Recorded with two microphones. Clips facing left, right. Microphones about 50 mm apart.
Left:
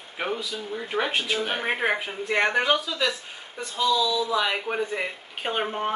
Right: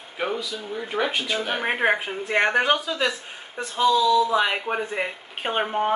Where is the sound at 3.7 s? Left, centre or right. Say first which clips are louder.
Right 4 dB; right.